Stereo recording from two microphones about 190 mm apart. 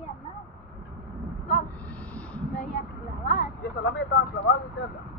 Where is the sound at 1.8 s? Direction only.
5° left (ahead or behind).